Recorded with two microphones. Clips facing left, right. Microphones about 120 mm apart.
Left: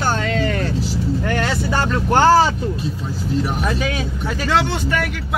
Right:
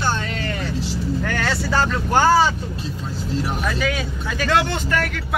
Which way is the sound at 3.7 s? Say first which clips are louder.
Left 1 dB; 25° left (ahead or behind).